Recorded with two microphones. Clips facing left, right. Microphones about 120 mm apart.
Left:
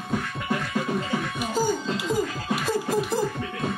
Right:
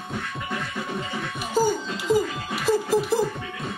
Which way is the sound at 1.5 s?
Centre (ahead or behind).